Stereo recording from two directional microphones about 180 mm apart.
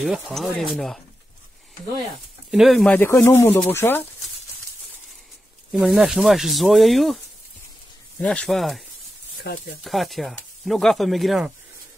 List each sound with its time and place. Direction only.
0.0 s speech: centre (ahead or behind)
2.5 s speech: centre (ahead or behind)
5.7 s speech: 5° right (ahead or behind)
8.2 s speech: 5° left (ahead or behind)
9.5 s speech: 65° left (ahead or behind)
9.8 s speech: centre (ahead or behind)